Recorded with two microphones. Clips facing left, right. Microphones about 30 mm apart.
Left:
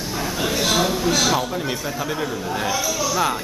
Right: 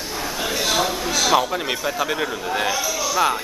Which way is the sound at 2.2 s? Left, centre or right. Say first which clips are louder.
Right 1 dB; right.